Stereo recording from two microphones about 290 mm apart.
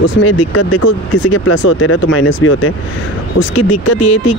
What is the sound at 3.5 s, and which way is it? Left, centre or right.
Speech, left.